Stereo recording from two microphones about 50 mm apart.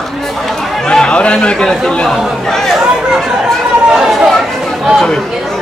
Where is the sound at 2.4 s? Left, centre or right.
Centre.